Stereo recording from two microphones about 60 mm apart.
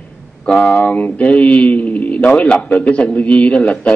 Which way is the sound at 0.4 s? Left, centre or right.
Centre.